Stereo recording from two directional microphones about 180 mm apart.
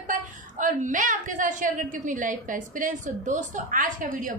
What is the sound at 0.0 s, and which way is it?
A woman's voice, 45° right (ahead or behind).